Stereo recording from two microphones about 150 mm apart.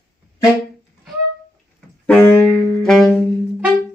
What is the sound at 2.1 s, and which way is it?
Music, 15° left (ahead or behind).